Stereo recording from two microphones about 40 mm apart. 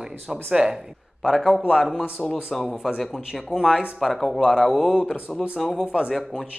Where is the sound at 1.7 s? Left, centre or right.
Centre.